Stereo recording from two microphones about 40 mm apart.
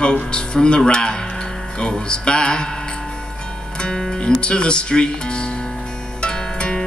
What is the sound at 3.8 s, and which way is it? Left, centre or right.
Speech, centre.